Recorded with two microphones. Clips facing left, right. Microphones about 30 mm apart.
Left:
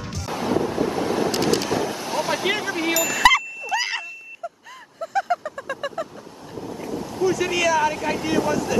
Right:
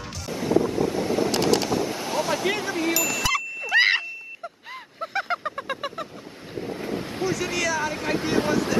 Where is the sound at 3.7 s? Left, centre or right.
Right.